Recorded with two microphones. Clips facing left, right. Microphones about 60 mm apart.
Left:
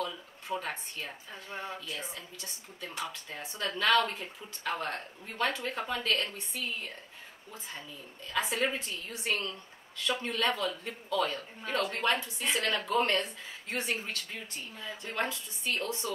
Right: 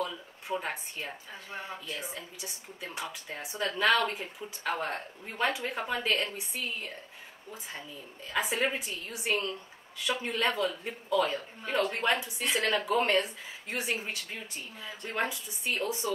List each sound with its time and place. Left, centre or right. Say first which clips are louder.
0.6 s speech: right 2 dB; centre
8.3 s speech: right 1 dB; centre